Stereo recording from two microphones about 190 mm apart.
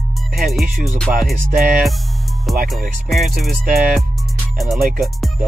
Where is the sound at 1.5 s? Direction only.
45° right (ahead or behind).